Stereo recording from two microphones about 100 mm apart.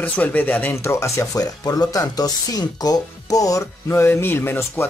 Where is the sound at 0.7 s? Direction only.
30° left (ahead or behind).